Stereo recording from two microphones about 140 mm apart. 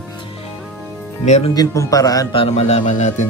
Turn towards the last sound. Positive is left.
turn(degrees=60)  # may be behind; listen again after turning